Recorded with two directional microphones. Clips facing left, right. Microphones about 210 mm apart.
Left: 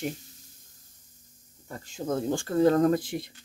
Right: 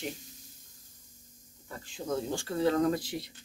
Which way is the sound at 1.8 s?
45° left (ahead or behind).